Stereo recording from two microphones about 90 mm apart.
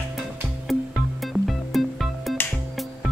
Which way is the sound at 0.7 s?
Centre (ahead or behind).